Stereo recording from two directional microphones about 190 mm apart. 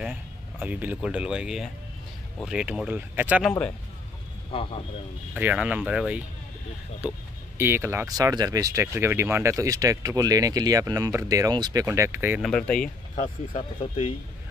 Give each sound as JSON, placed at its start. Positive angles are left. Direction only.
{"t": 0.0, "sound": "speech", "side_deg": -5}
{"t": 4.5, "sound": "a man's voice", "side_deg": 30}
{"t": 5.3, "sound": "speech", "side_deg": -5}
{"t": 12.4, "sound": "speech", "side_deg": 5}
{"t": 12.8, "sound": "speech", "side_deg": 45}